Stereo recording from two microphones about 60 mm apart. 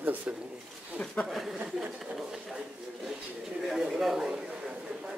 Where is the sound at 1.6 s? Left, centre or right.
Centre.